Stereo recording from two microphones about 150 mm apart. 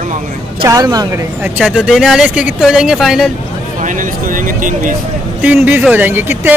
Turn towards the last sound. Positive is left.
turn(degrees=-15)  # may be behind; listen again after turning